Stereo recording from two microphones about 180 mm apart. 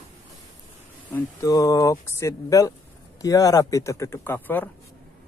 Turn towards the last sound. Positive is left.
turn(degrees=10)  # may be behind; listen again after turning